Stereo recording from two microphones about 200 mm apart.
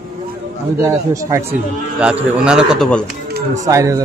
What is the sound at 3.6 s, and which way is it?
Speech, 15° right (ahead or behind).